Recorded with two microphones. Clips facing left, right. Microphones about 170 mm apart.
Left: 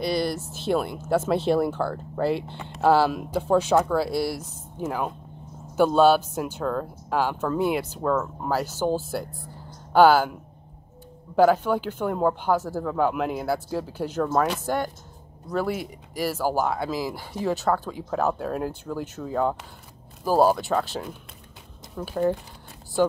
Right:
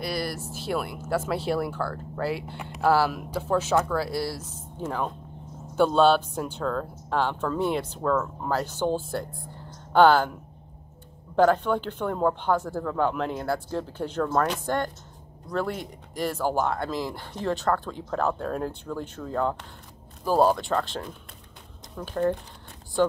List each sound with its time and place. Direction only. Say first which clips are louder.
0.0 s speech: left 5 dB; 5° right (ahead or behind)
0.9 s speech: left 4 dB; 20° left (ahead or behind)
2.1 s speech: left 5 dB; 5° right (ahead or behind)
2.8 s speech: left 3 dB; 20° left (ahead or behind)
11.3 s speech: left 2 dB; 5° left (ahead or behind)